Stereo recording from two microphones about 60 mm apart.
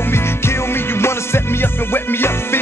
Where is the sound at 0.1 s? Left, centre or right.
Left.